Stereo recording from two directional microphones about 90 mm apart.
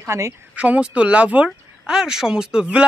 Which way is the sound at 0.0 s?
30° right (ahead or behind).